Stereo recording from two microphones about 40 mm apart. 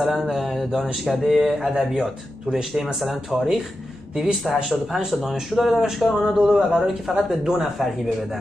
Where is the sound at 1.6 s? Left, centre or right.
Centre.